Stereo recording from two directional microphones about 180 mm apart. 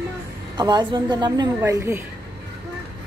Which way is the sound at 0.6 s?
25° right (ahead or behind).